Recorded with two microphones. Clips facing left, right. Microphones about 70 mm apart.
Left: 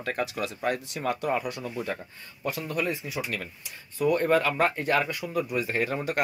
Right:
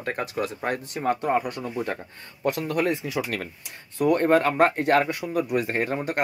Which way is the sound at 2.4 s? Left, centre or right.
Right.